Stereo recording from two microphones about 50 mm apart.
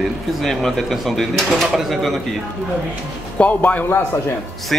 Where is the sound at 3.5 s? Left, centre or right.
Left.